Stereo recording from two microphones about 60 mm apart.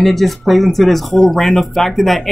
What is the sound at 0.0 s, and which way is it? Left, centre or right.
Speech, centre.